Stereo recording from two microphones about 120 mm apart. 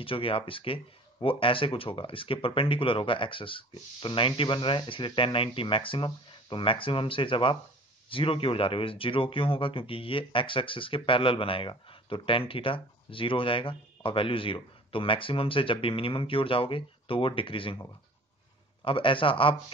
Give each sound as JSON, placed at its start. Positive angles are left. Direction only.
{"t": 0.0, "sound": "speech", "side_deg": 50}
{"t": 18.9, "sound": "speech", "side_deg": 45}